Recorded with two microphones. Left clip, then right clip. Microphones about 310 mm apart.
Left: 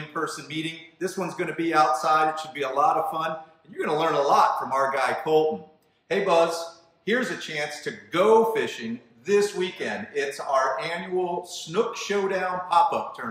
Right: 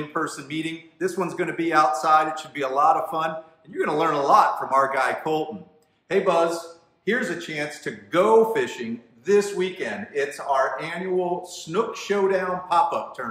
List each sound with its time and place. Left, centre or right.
0.1 s a man's voice: centre